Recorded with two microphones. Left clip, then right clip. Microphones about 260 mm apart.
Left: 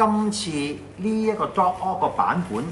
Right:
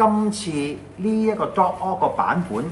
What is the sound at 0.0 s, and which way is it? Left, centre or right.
Speech, centre.